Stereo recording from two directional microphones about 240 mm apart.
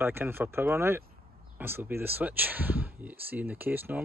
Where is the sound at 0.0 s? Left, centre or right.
Centre.